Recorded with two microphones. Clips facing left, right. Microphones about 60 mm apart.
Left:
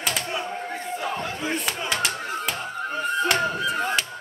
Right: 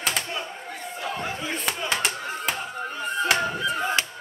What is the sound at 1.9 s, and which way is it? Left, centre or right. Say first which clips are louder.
Clapping: left 1 dB; centre.